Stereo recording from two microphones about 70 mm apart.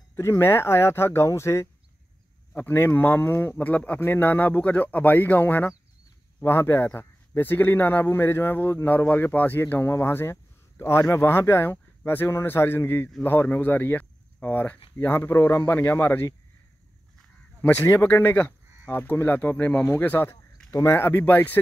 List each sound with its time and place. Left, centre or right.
0.1 s speech: left
2.5 s speech: left
15.7 s speech: left
17.6 s speech: left
20.7 s speech: left
21.0 s speech: left